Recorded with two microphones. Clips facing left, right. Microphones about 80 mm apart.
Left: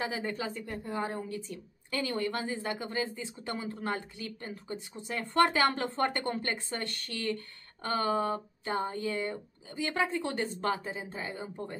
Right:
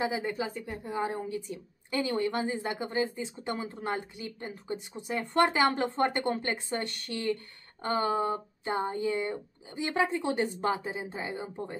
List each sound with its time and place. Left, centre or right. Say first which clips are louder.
0.0 s a woman's voice: right 3 dB; centre
0.9 s speech: right 3 dB; centre